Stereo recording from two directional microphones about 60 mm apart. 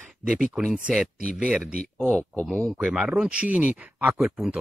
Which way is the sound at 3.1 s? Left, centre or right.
Centre.